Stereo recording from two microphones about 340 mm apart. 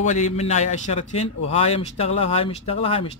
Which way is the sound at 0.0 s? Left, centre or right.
Left.